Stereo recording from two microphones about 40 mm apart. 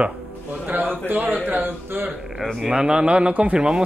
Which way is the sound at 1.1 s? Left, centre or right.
Right.